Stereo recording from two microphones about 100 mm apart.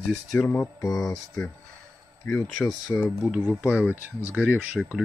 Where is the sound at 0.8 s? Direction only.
35° left (ahead or behind).